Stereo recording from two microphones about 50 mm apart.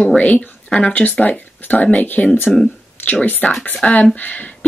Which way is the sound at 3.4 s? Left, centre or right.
Left.